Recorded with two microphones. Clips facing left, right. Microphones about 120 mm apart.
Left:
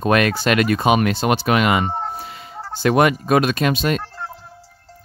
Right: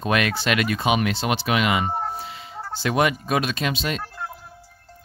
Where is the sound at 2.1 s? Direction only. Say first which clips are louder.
Left 1 dB; 50° left (ahead or behind).